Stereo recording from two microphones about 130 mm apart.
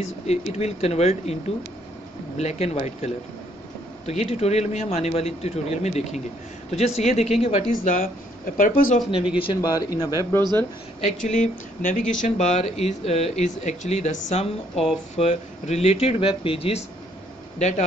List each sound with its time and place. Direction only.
0.0 s speech: 55° left (ahead or behind)
7.7 s speech: 90° left
9.6 s speech: 30° left (ahead or behind)
11.2 s speech: 70° left (ahead or behind); by 16.8 s 45° left (ahead or behind)
17.6 s speech: 60° left (ahead or behind)